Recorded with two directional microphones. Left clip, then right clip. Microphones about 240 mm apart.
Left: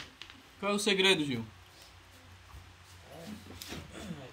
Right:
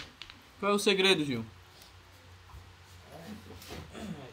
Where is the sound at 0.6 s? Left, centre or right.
Centre.